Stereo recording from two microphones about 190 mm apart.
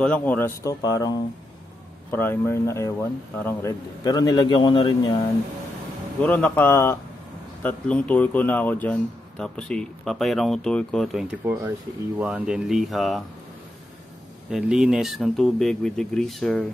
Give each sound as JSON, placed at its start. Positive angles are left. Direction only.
{"t": 0.0, "sound": "speech", "side_deg": 5}
{"t": 6.2, "sound": "speech", "side_deg": 10}
{"t": 14.5, "sound": "speech", "side_deg": -5}